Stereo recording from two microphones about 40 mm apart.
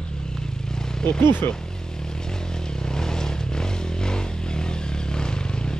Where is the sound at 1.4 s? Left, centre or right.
Left.